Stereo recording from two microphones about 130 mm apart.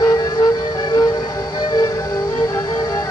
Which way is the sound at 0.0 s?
25° left (ahead or behind).